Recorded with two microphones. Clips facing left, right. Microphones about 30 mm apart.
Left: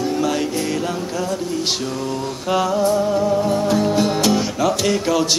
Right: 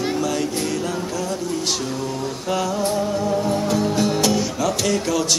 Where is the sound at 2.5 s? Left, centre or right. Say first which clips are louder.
Left 5 dB; centre.